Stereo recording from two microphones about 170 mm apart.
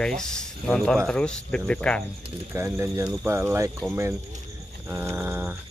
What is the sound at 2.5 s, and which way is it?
Speech, 15° right (ahead or behind).